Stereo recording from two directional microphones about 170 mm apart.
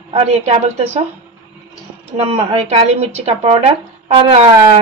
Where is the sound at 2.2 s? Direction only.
35° right (ahead or behind).